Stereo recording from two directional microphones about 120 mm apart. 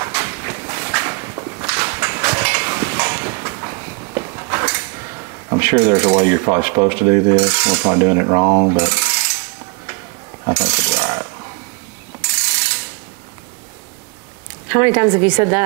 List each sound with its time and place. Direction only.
0.0 s walk: 25° right (ahead or behind)
5.6 s dishes: 25° right (ahead or behind)
10.6 s jackhammer: 15° right (ahead or behind)
12.4 s mechanisms: 15° right (ahead or behind)
14.7 s dishes: 25° right (ahead or behind)